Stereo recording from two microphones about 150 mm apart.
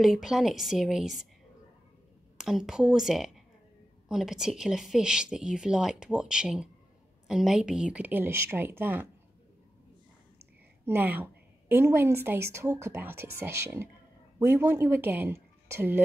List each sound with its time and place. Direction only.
0.0 s speech: centre (ahead or behind)
2.3 s speech: centre (ahead or behind)
10.9 s speech: 15° right (ahead or behind)